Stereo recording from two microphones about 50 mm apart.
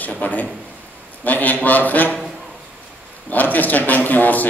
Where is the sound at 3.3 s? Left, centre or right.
Left.